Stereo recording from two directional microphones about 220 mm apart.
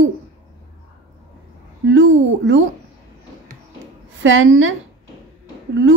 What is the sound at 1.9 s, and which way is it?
Speech, 60° right (ahead or behind).